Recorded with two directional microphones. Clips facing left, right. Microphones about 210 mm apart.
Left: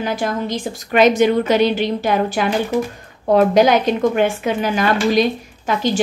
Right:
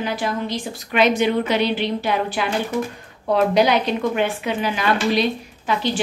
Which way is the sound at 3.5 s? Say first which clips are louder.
Left 4 dB; 45° left (ahead or behind).